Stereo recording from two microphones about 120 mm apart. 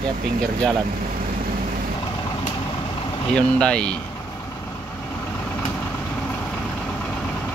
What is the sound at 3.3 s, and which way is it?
Speech, 10° left (ahead or behind).